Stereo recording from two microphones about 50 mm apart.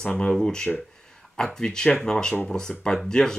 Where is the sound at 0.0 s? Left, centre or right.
Left.